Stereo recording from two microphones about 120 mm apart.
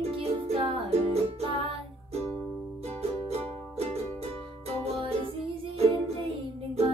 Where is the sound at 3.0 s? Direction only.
60° right (ahead or behind).